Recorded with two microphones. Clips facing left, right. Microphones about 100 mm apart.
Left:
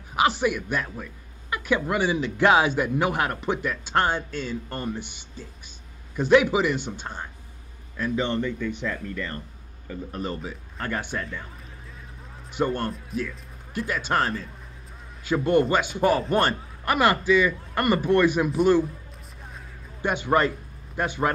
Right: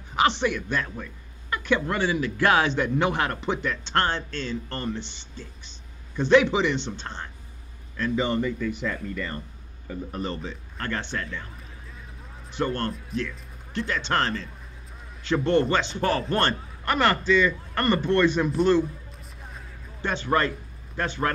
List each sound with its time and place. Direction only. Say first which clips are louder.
0.1 s speech: even; 10° left (ahead or behind)
8.2 s speech: right 1 dB; 5° right (ahead or behind)
10.1 s speech: left 1 dB; 5° left (ahead or behind)
12.4 s a man's voice: left 1 dB; 10° left (ahead or behind)
20.0 s a man's voice: left 2 dB; 15° left (ahead or behind)